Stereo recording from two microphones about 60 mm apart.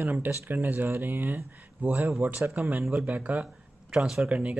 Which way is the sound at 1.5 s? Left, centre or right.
Right.